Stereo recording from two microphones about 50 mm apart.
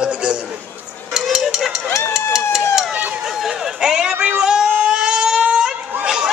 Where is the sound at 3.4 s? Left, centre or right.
Centre.